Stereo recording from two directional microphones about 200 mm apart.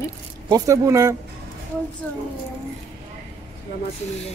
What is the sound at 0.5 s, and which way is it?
Speech, 15° right (ahead or behind).